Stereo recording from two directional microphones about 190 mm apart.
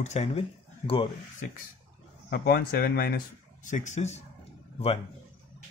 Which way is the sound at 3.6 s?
40° left (ahead or behind).